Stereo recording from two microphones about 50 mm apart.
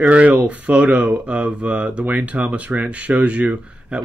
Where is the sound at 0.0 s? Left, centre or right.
Right.